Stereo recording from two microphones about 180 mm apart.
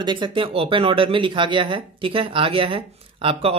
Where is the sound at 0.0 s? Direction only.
25° right (ahead or behind).